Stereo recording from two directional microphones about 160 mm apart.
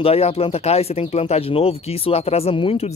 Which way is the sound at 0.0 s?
35° left (ahead or behind).